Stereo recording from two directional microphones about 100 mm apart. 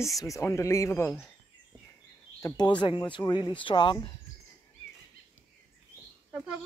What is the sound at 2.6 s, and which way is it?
Speech, 50° left (ahead or behind).